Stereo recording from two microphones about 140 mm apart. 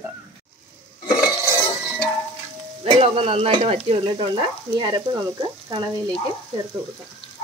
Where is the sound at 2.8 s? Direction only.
40° right (ahead or behind).